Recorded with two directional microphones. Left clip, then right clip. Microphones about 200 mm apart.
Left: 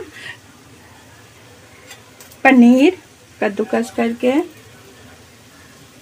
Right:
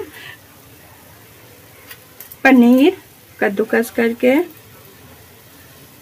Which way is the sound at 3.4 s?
15° right (ahead or behind).